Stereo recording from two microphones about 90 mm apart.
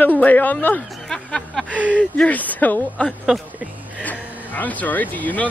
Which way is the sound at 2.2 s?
15° left (ahead or behind).